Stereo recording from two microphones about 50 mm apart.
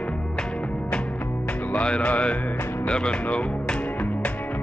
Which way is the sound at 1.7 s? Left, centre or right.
Centre.